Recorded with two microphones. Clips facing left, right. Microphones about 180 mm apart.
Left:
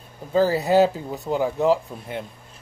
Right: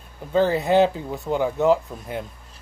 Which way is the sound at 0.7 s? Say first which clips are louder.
Even; 35° left (ahead or behind).